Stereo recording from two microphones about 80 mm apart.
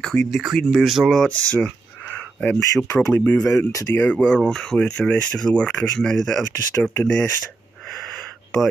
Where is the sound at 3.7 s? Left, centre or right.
Left.